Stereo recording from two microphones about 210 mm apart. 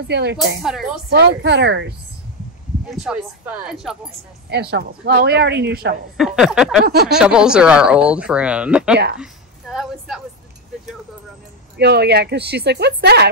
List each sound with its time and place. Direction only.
0.1 s speech: 55° right (ahead or behind)
0.6 s speech: centre (ahead or behind)
1.1 s speech: 55° right (ahead or behind)
2.9 s speech: 5° right (ahead or behind)
4.5 s speech: 50° right (ahead or behind)
6.1 s speech: centre (ahead or behind)
9.2 s a sound: 5° right (ahead or behind)
11.7 s speech: 50° right (ahead or behind)